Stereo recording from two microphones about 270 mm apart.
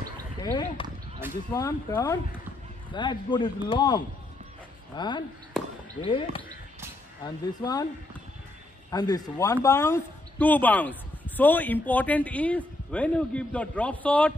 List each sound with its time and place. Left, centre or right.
0.4 s a sound: centre
1.5 s speech: centre
8.9 s speech: centre